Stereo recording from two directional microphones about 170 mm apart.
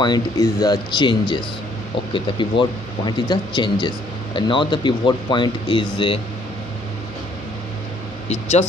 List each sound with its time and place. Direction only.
0.0 s speech: 25° left (ahead or behind)
8.3 s speech: 40° left (ahead or behind)